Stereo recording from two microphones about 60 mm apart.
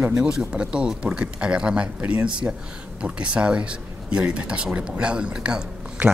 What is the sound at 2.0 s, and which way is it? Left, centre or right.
Speech, right.